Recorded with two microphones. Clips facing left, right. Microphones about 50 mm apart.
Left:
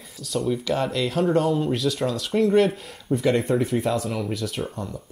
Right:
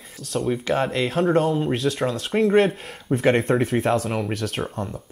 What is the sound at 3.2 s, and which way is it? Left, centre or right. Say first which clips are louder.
Speech: right 2 dB; right.